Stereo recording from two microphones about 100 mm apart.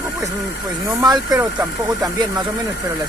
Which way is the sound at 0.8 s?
45° right (ahead or behind).